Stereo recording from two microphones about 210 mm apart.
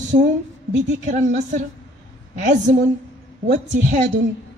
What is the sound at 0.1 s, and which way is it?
Speech, 40° right (ahead or behind).